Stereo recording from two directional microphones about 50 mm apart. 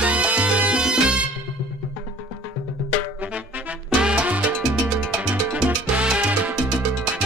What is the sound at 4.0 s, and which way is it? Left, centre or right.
Salsa music, centre.